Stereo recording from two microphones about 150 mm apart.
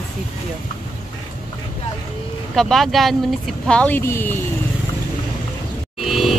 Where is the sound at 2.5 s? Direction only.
Centre (ahead or behind).